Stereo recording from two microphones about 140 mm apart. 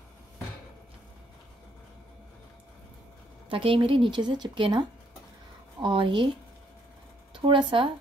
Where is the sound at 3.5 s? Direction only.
40° right (ahead or behind).